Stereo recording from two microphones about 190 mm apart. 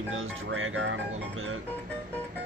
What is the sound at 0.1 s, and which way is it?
Speech, 90° right.